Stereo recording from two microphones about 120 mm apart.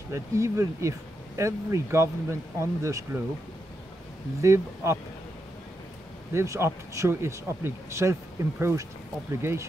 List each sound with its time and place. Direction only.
0.1 s speech: 25° right (ahead or behind)
4.4 s speech: 25° right (ahead or behind)
6.3 s speech: 25° right (ahead or behind)